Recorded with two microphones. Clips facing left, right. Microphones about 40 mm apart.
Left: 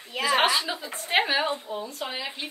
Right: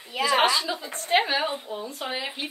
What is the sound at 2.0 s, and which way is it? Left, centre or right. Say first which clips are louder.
Speech: right 2 dB; centre.